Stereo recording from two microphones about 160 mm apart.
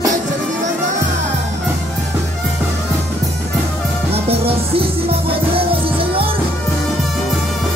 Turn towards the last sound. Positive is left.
turn(degrees=-35)  # may be behind; listen again after turning